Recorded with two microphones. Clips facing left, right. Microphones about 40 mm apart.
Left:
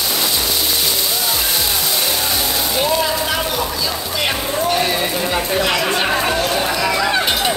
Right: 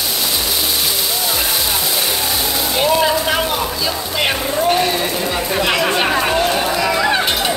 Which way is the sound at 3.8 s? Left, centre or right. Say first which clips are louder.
Right 2 dB; centre.